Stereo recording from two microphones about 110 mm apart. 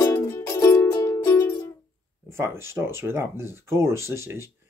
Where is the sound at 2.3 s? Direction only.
25° right (ahead or behind).